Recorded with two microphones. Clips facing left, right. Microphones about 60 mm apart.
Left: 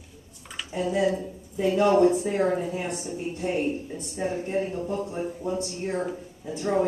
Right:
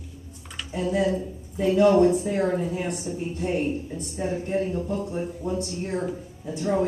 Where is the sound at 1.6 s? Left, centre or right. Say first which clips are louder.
Right 2 dB; left.